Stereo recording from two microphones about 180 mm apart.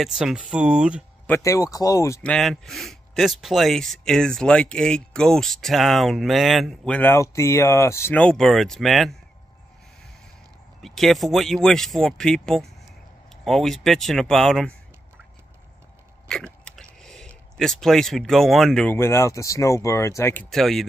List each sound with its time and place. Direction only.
0.0 s speech: 5° right (ahead or behind)
1.2 s speech: 15° left (ahead or behind)
2.3 s speech: 5° left (ahead or behind)
10.8 s speech: centre (ahead or behind)
16.3 s biting: 5° left (ahead or behind)
17.6 s speech: centre (ahead or behind)
20.4 s speech: centre (ahead or behind)